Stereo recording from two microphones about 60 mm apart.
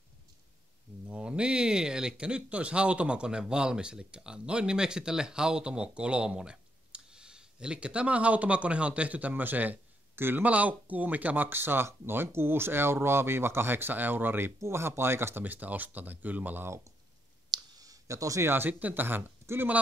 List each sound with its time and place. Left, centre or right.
1.0 s speech: centre; by 10.4 s right
10.4 s speech: right
14.6 s speech: right
15.4 s speech: right
17.5 s clicking: right
18.5 s speech: right